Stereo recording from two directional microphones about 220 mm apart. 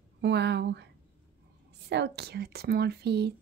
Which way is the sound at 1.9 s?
50° right (ahead or behind).